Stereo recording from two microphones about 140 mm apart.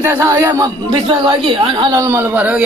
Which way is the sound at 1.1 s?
35° right (ahead or behind).